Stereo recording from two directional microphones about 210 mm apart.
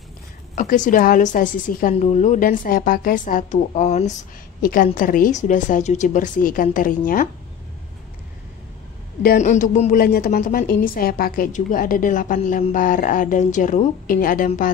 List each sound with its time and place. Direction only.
0.6 s a woman's voice: 40° left (ahead or behind)
4.6 s a woman's voice: 45° left (ahead or behind)
9.2 s a woman's voice: 40° left (ahead or behind)
9.9 s a woman's voice: 45° left (ahead or behind)